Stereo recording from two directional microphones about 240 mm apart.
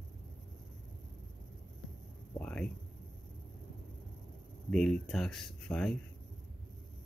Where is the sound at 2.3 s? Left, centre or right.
Centre.